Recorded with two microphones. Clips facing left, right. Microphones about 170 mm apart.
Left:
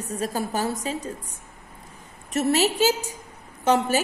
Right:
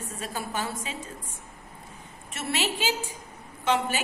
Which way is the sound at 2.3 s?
40° left (ahead or behind).